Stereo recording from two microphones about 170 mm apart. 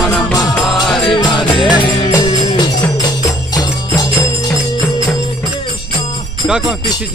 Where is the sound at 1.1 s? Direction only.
30° left (ahead or behind).